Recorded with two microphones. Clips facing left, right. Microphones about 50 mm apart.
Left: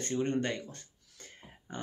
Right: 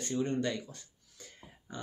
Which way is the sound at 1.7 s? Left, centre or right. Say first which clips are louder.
Left 2 dB; left.